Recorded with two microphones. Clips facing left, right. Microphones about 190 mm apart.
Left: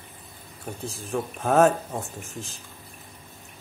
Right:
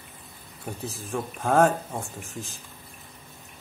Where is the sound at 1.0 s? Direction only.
Centre (ahead or behind).